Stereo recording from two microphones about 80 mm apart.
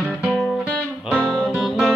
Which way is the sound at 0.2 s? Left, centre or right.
Centre.